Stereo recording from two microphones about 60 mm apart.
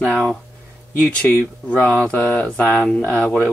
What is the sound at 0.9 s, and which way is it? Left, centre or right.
Speech, left.